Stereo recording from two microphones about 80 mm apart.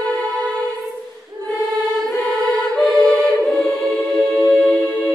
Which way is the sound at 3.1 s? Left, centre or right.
Centre.